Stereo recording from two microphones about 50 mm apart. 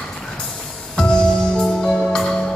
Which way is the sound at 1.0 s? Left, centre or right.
Centre.